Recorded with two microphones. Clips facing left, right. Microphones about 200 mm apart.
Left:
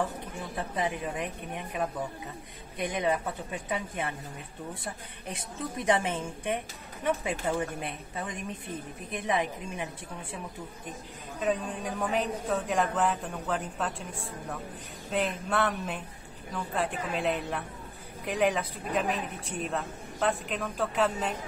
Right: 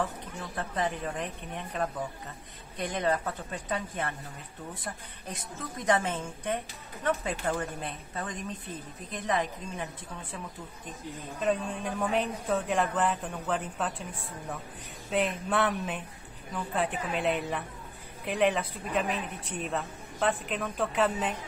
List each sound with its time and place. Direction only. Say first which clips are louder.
0.0 s a woman's voice: left 1 dB; 15° left (ahead or behind)
5.6 s a woman's voice: left 1 dB; 15° left (ahead or behind)
11.4 s speech: even; centre (ahead or behind)
15.0 s speech: right 1 dB; 5° right (ahead or behind)